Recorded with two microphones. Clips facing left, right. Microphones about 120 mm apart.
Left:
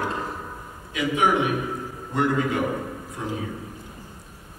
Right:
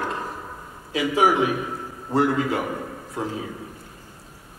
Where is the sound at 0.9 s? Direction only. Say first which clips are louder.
Right 2 dB; 35° right (ahead or behind).